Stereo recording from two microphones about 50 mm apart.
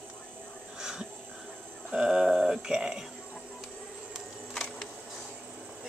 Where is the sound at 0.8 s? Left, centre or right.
Centre.